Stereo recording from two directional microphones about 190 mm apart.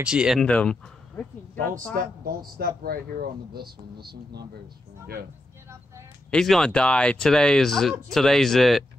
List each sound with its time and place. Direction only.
0.0 s speech: 5° right (ahead or behind)
2.2 s speech: 50° right (ahead or behind)
6.3 s speech: 5° left (ahead or behind)